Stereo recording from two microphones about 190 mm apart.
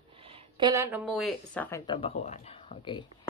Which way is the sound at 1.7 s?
25° left (ahead or behind).